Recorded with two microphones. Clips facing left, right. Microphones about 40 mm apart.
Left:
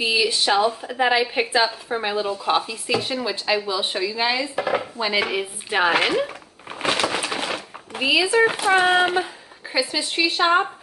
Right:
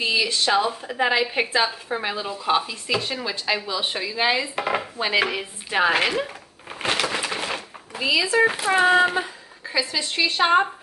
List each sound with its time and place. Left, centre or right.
0.0 s a woman's voice: centre
4.9 s dishes: centre
5.3 s speech: centre
5.9 s a sound: centre
7.9 s a sound: left
8.2 s a woman's voice: centre
10.3 s a woman's voice: centre